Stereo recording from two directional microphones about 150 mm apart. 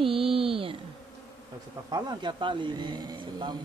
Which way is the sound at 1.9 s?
30° right (ahead or behind).